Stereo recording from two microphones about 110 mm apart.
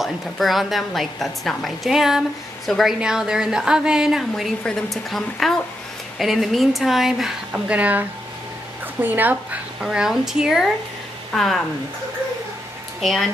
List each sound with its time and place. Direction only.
0.0 s a woman's voice: centre (ahead or behind)
13.0 s a woman's voice: centre (ahead or behind)